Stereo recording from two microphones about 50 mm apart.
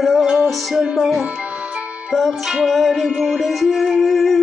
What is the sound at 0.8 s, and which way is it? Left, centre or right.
Speech, centre.